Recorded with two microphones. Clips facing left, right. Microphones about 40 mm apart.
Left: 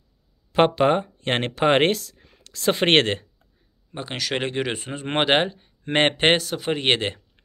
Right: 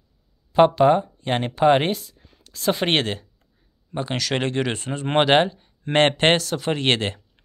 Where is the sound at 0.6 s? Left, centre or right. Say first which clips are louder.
Right 3 dB; left.